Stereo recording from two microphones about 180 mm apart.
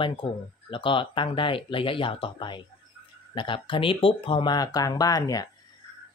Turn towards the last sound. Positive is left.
turn(degrees=20)  # may be behind; listen again after turning